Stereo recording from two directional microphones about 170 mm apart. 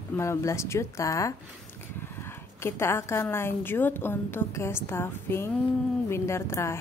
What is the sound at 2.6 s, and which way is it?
A woman's voice, 15° left (ahead or behind).